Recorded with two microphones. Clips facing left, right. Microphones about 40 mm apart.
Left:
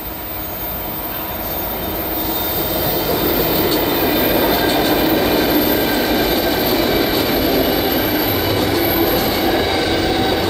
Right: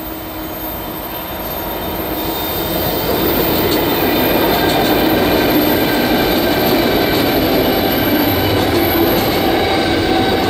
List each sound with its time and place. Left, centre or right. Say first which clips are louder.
4.5 s train: right 2 dB; right